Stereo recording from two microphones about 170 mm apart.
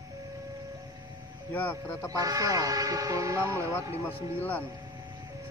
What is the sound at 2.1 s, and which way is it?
Speech, 20° right (ahead or behind).